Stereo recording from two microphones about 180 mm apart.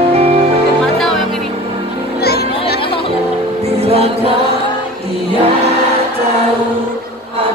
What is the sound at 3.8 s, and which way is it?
Music, 35° right (ahead or behind).